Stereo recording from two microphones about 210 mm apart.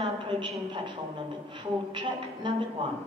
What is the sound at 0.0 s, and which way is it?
A woman's voice, 25° right (ahead or behind).